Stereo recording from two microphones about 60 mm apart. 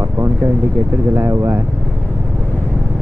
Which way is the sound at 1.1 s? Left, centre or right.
Right.